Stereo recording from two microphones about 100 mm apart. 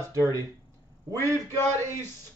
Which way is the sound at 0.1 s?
35° right (ahead or behind).